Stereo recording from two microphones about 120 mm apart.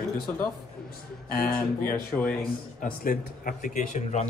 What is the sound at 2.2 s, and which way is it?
Speech, 5° left (ahead or behind).